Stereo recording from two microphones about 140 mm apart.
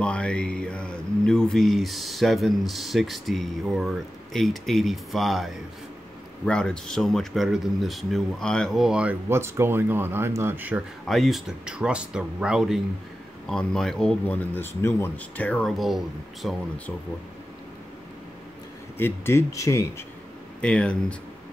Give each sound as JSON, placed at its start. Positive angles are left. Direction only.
{"t": 0.0, "sound": "speech", "side_deg": 5}
{"t": 9.3, "sound": "speech", "side_deg": -15}
{"t": 11.1, "sound": "speech", "side_deg": 0}
{"t": 18.9, "sound": "speech", "side_deg": 15}
{"t": 20.6, "sound": "speech", "side_deg": 5}